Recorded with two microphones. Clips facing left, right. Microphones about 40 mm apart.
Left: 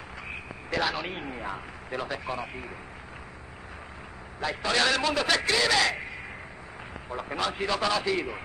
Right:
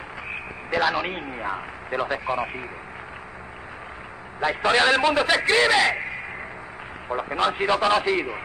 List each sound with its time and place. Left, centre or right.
0.7 s a man's voice: centre
1.3 s a man's voice: right
4.4 s a man's voice: right
7.2 s a man's voice: right